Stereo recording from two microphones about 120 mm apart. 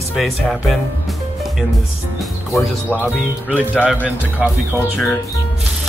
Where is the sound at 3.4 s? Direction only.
10° right (ahead or behind).